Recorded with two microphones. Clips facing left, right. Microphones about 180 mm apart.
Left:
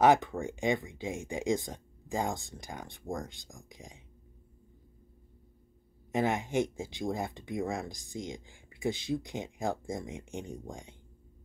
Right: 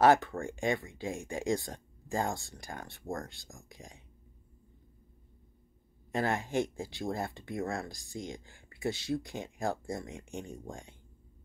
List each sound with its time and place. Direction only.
0.0 s speech: 15° left (ahead or behind)
6.1 s speech: 20° left (ahead or behind)